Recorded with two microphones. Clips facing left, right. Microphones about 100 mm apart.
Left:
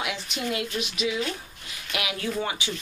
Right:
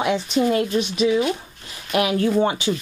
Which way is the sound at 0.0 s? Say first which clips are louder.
Right 11 dB; 35° right (ahead or behind).